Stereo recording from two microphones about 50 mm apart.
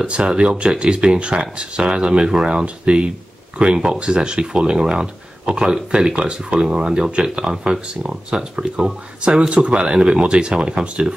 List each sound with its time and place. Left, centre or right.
0.0 s speech: right